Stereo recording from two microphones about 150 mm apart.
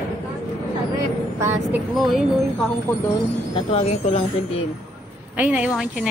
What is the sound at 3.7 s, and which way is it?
Speech, 40° left (ahead or behind).